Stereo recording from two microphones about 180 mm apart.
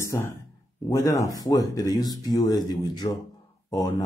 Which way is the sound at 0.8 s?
20° left (ahead or behind).